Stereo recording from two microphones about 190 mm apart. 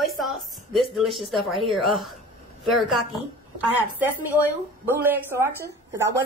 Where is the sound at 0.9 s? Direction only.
Centre (ahead or behind).